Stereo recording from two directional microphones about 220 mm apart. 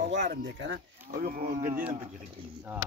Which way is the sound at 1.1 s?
40° right (ahead or behind).